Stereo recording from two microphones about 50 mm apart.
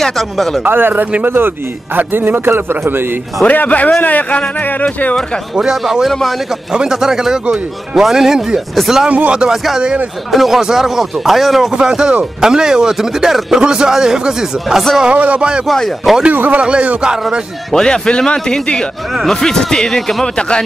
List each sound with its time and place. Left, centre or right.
0.0 s speech: centre
0.7 s a man's voice: right
3.4 s speech: left
5.6 s speech: centre
9.1 s speech: right
10.3 s speech: centre
11.7 s speech: centre
15.0 s speech: right
15.6 s speech: centre
16.3 s speech: right
17.7 s a man's voice: centre
20.3 s speech: centre